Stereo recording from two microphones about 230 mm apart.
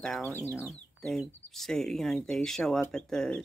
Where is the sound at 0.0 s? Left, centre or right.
Centre.